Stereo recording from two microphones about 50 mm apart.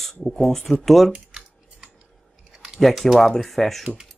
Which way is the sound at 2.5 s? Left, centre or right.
Centre.